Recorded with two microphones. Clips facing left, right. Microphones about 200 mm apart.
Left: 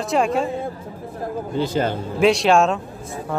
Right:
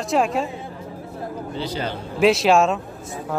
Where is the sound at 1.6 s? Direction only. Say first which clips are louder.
Left 6 dB; 50° left (ahead or behind).